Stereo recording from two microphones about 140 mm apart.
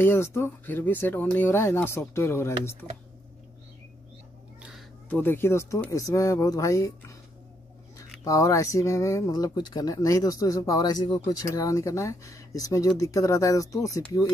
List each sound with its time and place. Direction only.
0.0 s speech: 15° left (ahead or behind)
4.6 s crow: 5° right (ahead or behind)
5.1 s speech: 15° left (ahead or behind)
8.2 s speech: 25° left (ahead or behind)